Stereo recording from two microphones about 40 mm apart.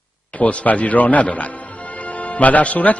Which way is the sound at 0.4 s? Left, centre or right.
Left.